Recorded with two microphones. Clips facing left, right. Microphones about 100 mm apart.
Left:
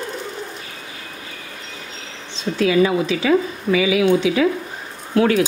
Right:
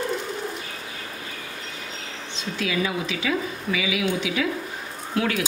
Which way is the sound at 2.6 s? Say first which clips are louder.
Left 10 dB; 35° left (ahead or behind).